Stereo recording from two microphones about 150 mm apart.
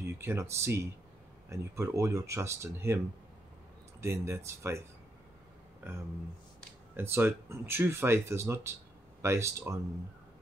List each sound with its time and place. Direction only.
0.2 s speech: 15° right (ahead or behind)
4.0 s speech: 20° right (ahead or behind)
5.8 s a sound: 15° right (ahead or behind)
7.0 s speech: 15° right (ahead or behind)